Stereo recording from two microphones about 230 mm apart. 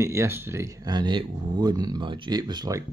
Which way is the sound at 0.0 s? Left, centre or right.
Centre.